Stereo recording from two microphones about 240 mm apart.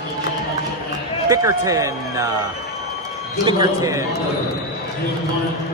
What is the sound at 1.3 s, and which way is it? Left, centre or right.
A man's voice, centre.